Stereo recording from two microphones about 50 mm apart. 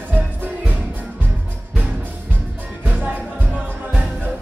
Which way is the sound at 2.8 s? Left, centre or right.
Right.